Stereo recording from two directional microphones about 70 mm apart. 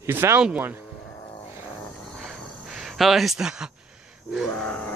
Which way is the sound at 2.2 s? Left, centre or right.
Centre.